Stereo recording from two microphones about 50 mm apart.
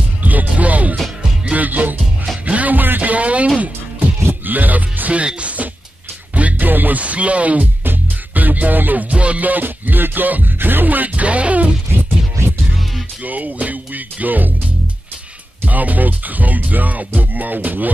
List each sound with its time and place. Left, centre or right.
0.2 s music: right
7.8 s music: right
9.1 s music: right
13.2 s music: right
15.6 s music: right